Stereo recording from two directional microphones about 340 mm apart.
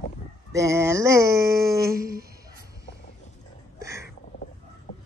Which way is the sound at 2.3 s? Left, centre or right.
Centre.